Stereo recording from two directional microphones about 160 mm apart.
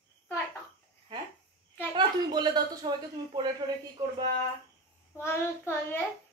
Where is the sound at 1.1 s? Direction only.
30° right (ahead or behind).